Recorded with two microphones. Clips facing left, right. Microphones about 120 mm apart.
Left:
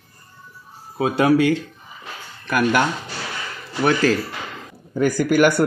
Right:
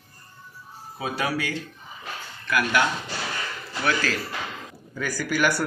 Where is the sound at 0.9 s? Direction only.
55° left (ahead or behind).